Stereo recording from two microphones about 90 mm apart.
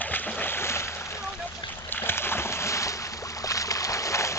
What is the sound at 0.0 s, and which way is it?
Boat, 20° left (ahead or behind).